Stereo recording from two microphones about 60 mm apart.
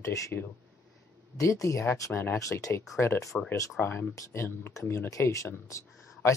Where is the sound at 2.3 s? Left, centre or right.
Left.